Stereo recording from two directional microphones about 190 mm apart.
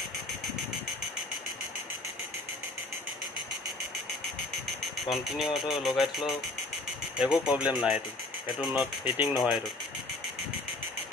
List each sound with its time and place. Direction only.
5.1 s speech: centre (ahead or behind)